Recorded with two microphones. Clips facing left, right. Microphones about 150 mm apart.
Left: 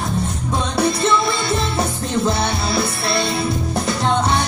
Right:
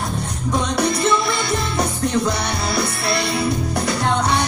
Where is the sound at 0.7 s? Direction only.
25° left (ahead or behind).